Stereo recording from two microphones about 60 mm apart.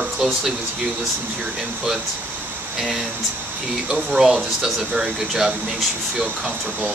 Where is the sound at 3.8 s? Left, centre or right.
Centre.